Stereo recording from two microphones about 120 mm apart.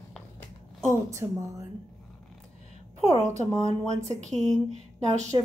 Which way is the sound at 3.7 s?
70° right (ahead or behind).